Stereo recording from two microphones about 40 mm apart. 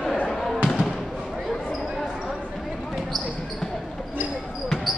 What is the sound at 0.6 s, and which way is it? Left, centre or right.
Basketball bounce, centre.